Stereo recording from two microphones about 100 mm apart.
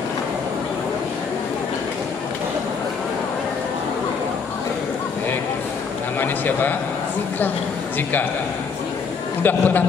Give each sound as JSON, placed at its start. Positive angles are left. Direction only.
{"t": 6.1, "sound": "a man's voice", "side_deg": 20}
{"t": 9.4, "sound": "a man's voice", "side_deg": 20}